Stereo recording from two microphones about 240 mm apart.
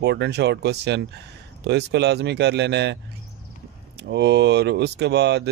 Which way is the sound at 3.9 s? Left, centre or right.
Right.